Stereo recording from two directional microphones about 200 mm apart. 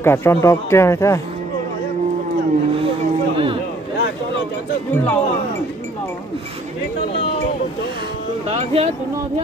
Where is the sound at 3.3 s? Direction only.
25° right (ahead or behind).